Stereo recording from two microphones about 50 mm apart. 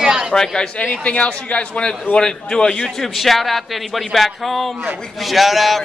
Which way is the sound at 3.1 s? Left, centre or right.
Centre.